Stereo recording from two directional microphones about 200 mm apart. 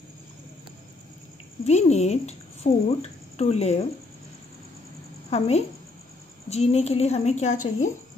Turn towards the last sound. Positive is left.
turn(degrees=35)  # may be behind; listen again after turning